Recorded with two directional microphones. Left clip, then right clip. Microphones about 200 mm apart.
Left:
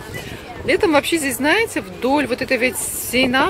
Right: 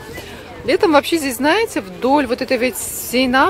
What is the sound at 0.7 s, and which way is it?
Speech, 15° right (ahead or behind).